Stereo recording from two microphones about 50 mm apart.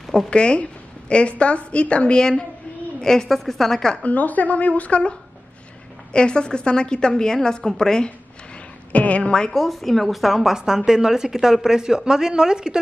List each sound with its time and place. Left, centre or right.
0.3 s a woman's voice: left
3.9 s a woman's voice: left
6.1 s a woman's voice: centre
8.9 s a woman's voice: left
9.3 s a woman's voice: centre